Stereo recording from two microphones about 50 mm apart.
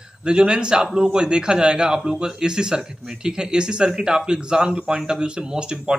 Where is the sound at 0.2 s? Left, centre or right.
Centre.